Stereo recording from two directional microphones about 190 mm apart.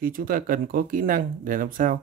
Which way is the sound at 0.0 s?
50° right (ahead or behind).